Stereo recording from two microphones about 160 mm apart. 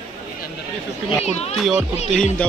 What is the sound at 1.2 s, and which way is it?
Speech, 40° left (ahead or behind).